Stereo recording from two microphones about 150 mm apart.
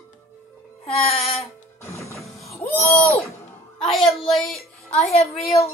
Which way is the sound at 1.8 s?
20° left (ahead or behind).